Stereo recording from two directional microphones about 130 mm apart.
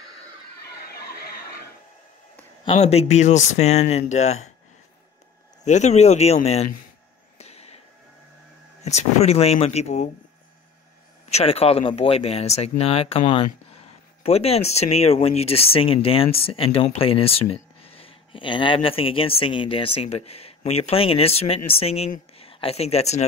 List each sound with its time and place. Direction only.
2.7 s speech: 55° left (ahead or behind)
5.7 s speech: 60° left (ahead or behind)
7.3 s a sound: 55° left (ahead or behind)
8.8 s speech: 55° left (ahead or behind)
11.2 s speech: 55° left (ahead or behind)